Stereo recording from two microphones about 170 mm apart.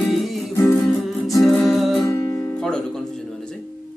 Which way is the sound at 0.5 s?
20° left (ahead or behind).